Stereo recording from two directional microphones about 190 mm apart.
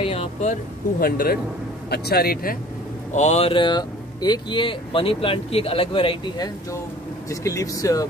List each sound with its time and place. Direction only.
0.0 s a sound: 30° left (ahead or behind)
0.9 s a man's voice: 50° left (ahead or behind)
3.1 s speech: 35° left (ahead or behind); by 8.1 s 20° left (ahead or behind)